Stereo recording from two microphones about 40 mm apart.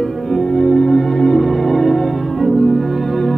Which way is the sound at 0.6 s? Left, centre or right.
Centre.